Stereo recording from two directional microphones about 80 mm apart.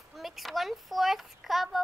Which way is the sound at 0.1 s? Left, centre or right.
Centre.